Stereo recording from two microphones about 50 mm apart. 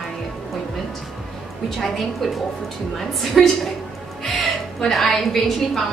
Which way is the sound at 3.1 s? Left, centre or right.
Centre.